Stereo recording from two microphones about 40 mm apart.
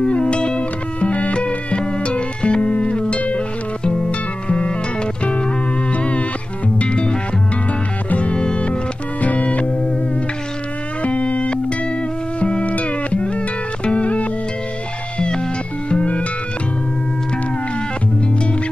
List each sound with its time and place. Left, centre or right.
0.0 s music: left
9.2 s music: left
11.0 s busy signal: left
12.4 s music: left